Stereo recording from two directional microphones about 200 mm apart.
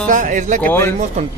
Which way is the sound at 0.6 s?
10° left (ahead or behind).